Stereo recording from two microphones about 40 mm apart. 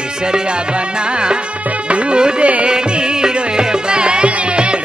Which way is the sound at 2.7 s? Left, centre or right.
Right.